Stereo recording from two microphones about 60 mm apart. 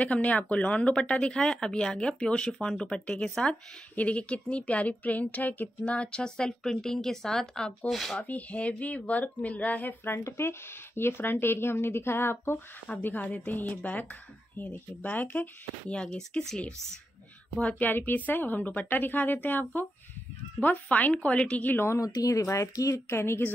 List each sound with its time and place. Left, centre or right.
0.0 s speech: centre
8.2 s speech: left
10.0 s speech: left
12.8 s speech: left
15.9 s speech: centre
17.7 s speech: left
21.7 s speech: left
22.0 s speech: left